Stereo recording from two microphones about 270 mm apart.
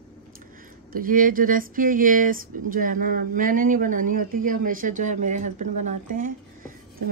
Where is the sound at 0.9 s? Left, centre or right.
Right.